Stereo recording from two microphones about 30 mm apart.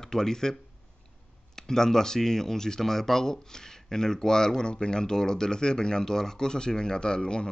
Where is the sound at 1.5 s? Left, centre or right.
Centre.